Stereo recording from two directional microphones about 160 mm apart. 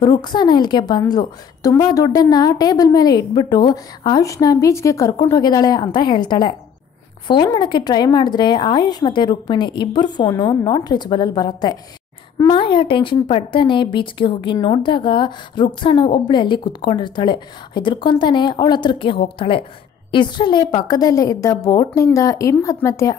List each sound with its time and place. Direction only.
0.0 s speech: 25° left (ahead or behind)